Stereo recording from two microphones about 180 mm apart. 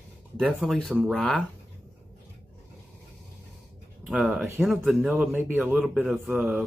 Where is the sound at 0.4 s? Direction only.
Centre (ahead or behind).